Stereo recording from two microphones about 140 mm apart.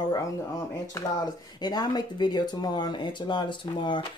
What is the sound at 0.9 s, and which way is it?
Speech, 30° left (ahead or behind).